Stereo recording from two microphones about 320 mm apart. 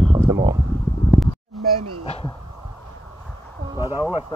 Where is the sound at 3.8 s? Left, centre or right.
Centre.